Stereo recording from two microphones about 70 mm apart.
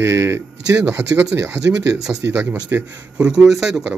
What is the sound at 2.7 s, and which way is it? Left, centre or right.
Speech, right.